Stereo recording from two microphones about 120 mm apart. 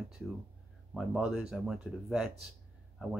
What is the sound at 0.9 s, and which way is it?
Speech, 5° right (ahead or behind).